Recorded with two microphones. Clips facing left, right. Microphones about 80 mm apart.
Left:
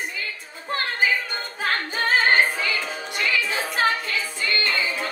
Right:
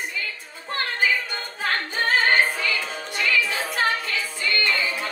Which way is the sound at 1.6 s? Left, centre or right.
Left.